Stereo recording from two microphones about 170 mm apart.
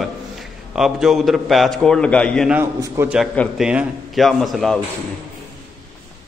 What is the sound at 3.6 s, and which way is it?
A man's voice, 5° right (ahead or behind).